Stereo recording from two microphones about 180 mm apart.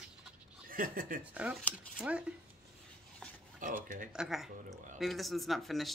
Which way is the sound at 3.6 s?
45° right (ahead or behind).